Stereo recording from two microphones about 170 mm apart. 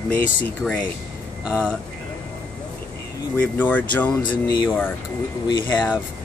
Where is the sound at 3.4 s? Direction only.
10° left (ahead or behind).